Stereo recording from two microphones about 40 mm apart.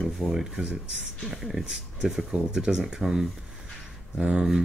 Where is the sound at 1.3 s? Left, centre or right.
Centre; by 3.1 s right.